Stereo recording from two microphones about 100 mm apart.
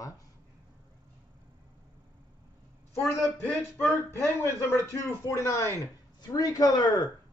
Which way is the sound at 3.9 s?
25° left (ahead or behind).